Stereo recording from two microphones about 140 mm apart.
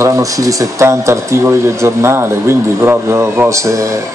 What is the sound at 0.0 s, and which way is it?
Speech, 25° right (ahead or behind).